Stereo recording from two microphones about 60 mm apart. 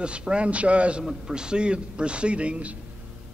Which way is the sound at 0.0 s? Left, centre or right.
Centre.